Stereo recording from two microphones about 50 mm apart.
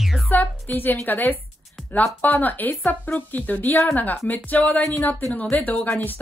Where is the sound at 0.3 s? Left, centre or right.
Left.